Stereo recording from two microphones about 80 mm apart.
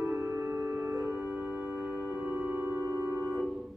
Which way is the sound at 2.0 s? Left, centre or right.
Centre.